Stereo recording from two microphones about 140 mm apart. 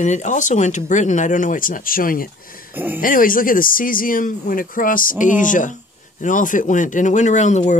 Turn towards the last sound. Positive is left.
turn(degrees=60)  # may be behind; listen again after turning